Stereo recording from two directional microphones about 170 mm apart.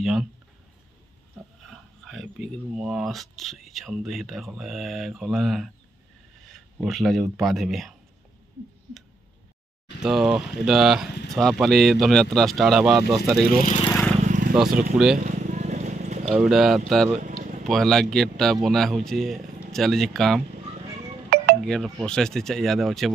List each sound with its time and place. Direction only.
0.0 s speech: 5° right (ahead or behind)
1.7 s pig: centre (ahead or behind)
2.7 s speech: 5° right (ahead or behind)
10.0 s speech: centre (ahead or behind)
14.2 s vehicle: 45° right (ahead or behind)
14.7 s speech: 55° right (ahead or behind)
15.1 s a sound: 45° right (ahead or behind)
16.3 s speech: 5° right (ahead or behind)
17.2 s vehicle: 45° right (ahead or behind)
17.6 s speech: centre (ahead or behind)
21.3 s wind chime: 65° right (ahead or behind)
21.6 s speech: centre (ahead or behind)